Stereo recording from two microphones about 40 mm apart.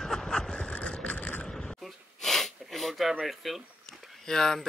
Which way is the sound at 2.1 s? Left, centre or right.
Centre.